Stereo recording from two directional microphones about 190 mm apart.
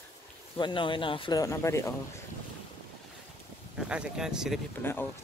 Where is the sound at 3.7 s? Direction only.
5° right (ahead or behind).